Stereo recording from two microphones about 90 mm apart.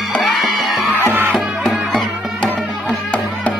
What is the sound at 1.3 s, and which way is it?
Music, centre (ahead or behind).